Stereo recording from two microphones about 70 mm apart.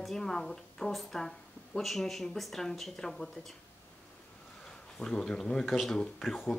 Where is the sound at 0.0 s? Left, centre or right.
Centre.